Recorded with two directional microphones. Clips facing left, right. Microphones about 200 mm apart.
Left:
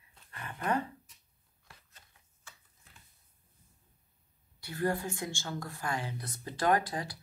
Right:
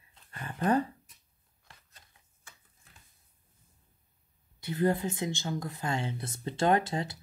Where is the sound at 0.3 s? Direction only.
30° right (ahead or behind).